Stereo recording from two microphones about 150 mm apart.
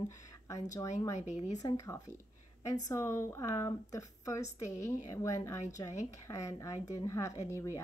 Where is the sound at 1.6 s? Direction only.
20° left (ahead or behind).